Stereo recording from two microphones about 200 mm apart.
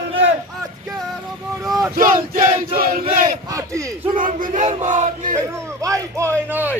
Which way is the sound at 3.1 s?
45° right (ahead or behind).